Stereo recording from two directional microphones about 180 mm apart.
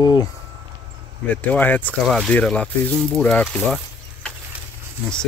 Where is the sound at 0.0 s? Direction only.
20° left (ahead or behind).